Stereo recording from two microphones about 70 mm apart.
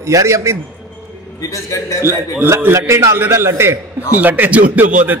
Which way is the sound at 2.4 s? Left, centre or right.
Right.